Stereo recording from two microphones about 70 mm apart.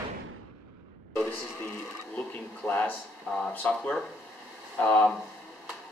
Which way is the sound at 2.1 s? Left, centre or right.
Centre.